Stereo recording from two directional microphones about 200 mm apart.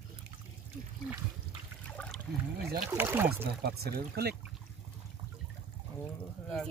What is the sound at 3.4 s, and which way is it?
Speech, 50° right (ahead or behind).